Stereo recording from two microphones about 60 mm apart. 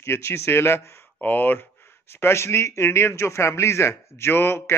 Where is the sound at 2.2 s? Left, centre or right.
Left.